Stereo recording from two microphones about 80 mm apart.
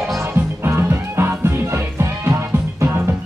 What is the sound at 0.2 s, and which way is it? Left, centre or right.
Music, right.